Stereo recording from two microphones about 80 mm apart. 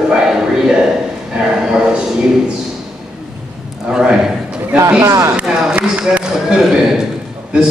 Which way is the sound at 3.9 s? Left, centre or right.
Centre.